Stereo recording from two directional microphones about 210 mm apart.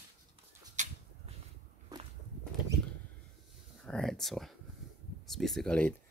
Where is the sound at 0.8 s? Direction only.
35° right (ahead or behind).